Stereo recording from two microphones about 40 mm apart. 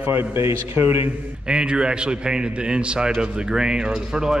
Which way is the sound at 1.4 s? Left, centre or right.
Right.